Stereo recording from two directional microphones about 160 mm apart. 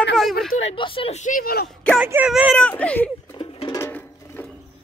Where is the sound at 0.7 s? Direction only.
35° left (ahead or behind); by 1.7 s 75° left (ahead or behind).